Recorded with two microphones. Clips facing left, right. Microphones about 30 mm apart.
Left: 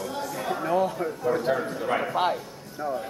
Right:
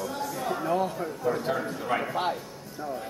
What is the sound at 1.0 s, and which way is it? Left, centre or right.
A man's voice, centre.